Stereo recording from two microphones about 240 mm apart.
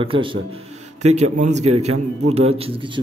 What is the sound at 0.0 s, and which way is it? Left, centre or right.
A man's voice, right.